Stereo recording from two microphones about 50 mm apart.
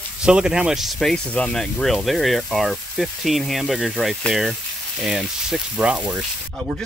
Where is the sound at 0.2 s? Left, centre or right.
Centre.